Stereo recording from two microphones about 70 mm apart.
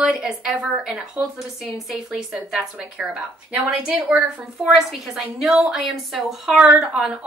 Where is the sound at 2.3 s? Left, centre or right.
Centre.